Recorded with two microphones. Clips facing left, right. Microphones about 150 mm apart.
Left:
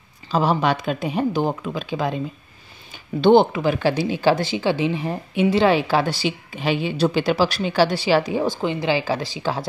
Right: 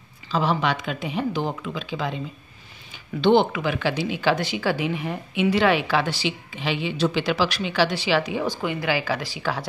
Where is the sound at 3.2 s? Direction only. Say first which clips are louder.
Left 4 dB; 40° left (ahead or behind).